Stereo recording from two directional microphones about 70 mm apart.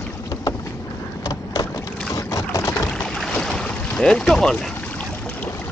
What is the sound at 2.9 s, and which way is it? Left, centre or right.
Boat, centre.